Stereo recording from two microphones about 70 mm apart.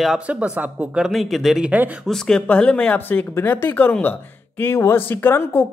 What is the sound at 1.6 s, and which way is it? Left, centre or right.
Speech, centre.